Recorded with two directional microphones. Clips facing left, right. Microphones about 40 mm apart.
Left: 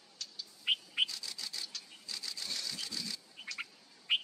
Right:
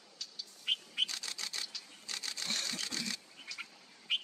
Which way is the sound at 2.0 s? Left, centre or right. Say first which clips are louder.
Right 3 dB; right.